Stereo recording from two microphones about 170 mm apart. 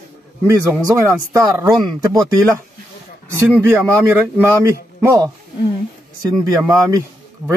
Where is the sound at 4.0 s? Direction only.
10° right (ahead or behind).